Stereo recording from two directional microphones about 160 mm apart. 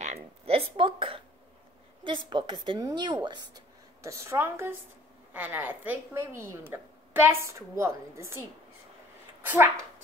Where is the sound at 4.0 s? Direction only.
15° right (ahead or behind).